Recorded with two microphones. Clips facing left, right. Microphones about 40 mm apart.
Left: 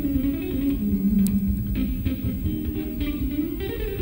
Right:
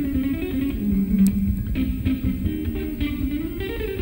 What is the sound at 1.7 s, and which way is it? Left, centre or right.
Music, centre.